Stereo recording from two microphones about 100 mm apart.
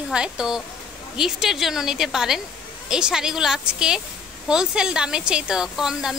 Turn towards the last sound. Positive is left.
turn(degrees=-5)  # may be behind; listen again after turning